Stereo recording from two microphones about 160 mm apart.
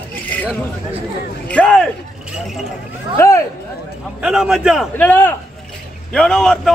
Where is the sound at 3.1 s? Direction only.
20° left (ahead or behind).